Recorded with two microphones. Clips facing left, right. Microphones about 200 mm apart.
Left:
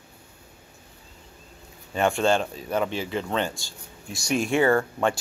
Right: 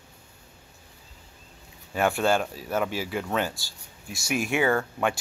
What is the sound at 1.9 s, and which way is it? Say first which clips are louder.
Speech: left 1 dB; 5° right (ahead or behind).